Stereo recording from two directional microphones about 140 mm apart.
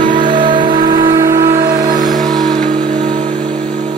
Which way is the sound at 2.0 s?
30° right (ahead or behind).